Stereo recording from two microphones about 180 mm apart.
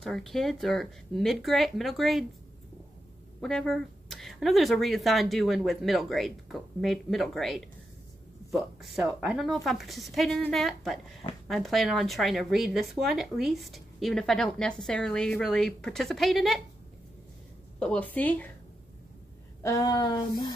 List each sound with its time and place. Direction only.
0.0 s a woman's voice: centre (ahead or behind)
3.3 s a woman's voice: 5° left (ahead or behind)
17.7 s a woman's voice: 5° left (ahead or behind)
19.6 s speech: 20° left (ahead or behind)